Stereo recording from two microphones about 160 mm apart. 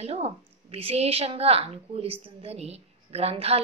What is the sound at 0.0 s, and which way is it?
A woman's voice, 40° right (ahead or behind).